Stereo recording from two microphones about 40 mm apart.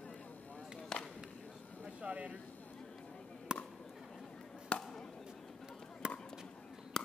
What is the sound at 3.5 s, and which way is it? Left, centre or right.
Chop, right.